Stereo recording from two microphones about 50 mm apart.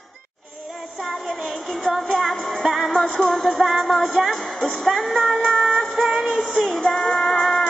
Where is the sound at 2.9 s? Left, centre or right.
Centre.